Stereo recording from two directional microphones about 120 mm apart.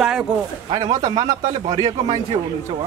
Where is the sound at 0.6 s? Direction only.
35° right (ahead or behind).